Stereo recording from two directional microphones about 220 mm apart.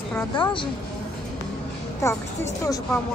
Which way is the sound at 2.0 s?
15° left (ahead or behind).